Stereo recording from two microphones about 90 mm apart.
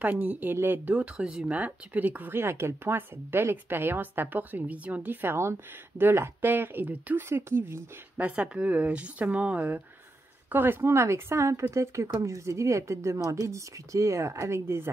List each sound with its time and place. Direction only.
0.0 s speech: 15° right (ahead or behind)
8.2 s speech: 15° right (ahead or behind)